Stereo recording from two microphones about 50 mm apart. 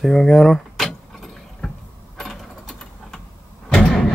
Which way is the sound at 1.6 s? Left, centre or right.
Centre.